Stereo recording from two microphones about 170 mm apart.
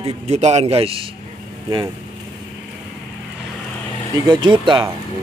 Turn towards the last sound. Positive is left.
turn(degrees=-30)  # may be behind; listen again after turning